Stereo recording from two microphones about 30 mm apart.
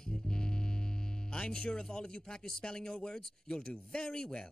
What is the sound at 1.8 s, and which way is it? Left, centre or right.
Speech, left.